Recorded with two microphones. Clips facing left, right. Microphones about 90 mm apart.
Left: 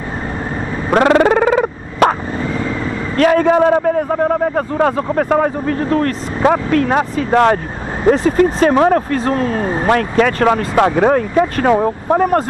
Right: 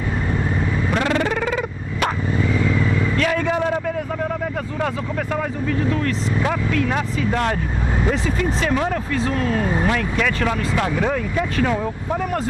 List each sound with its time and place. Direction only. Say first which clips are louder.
0.8 s vehicle: left 11 dB; 55° left (ahead or behind)
8.0 s speech: left 11 dB; 45° left (ahead or behind)
9.9 s speech: left 8 dB; 45° left (ahead or behind)